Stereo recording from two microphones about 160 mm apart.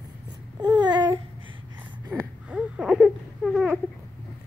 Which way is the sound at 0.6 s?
25° right (ahead or behind).